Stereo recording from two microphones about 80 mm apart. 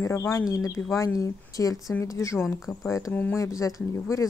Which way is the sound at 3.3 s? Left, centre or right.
Left.